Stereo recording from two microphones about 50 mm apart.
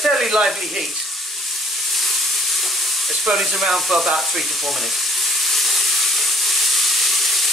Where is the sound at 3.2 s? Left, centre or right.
Centre.